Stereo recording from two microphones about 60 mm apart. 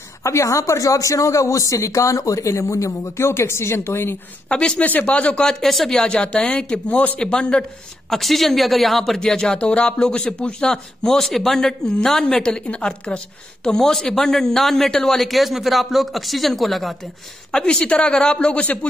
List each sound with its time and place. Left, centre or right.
0.2 s speech: left
3.3 s a woman's voice: left
4.5 s speech: centre
8.1 s speech: centre
17.5 s speech: centre